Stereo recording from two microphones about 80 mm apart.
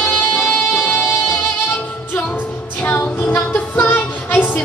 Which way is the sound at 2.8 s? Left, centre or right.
Left.